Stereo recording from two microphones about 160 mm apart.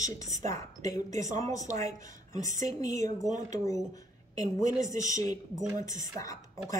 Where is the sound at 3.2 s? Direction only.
20° left (ahead or behind).